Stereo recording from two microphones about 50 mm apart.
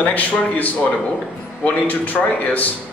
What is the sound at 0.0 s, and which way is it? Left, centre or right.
Speech, left.